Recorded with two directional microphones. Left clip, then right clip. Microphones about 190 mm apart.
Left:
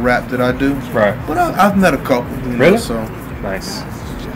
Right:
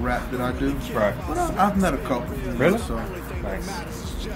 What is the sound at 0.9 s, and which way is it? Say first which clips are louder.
Speech: left 9 dB; 20° right (ahead or behind).